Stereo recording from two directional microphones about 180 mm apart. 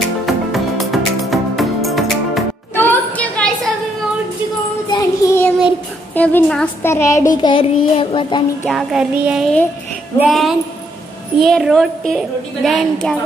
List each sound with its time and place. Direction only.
0.5 s music: centre (ahead or behind)
2.7 s a sound: 10° left (ahead or behind)
4.9 s music: 15° left (ahead or behind)
6.1 s a woman's voice: 10° left (ahead or behind)
7.4 s child singing: 30° left (ahead or behind)
8.6 s a woman's voice: 5° right (ahead or behind)